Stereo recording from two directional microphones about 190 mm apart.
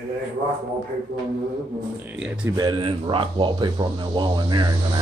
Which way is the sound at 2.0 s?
5° right (ahead or behind).